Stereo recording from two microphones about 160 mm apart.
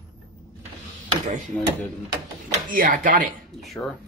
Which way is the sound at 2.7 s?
55° right (ahead or behind).